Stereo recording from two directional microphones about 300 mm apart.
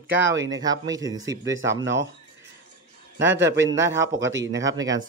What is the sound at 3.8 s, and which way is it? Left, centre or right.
Speech, centre.